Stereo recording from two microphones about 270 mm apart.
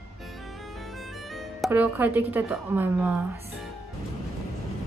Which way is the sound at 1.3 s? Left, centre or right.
Centre.